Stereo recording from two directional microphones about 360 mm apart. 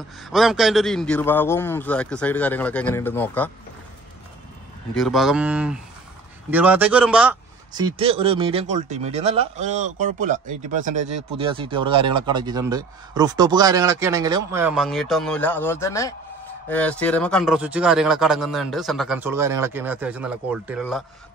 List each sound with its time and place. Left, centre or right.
0.2 s speech: centre
4.9 s speech: centre
8.0 s a man's voice: centre
11.0 s speech: right
11.3 s a man's voice: centre